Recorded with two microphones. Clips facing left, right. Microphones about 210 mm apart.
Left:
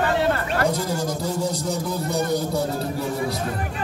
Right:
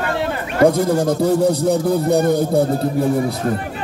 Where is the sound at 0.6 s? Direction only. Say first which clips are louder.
Right 12 dB; 55° right (ahead or behind).